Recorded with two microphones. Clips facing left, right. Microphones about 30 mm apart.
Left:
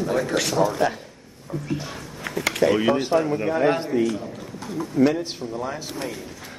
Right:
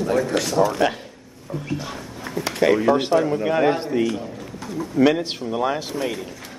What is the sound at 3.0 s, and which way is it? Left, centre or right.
Speech, right.